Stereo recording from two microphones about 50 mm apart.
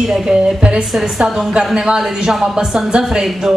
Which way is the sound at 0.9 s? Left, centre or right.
Centre.